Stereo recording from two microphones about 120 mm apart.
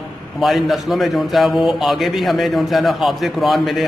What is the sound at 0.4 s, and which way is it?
A man's voice, centre (ahead or behind).